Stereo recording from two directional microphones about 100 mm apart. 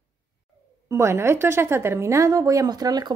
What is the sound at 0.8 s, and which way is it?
Speech, 25° right (ahead or behind).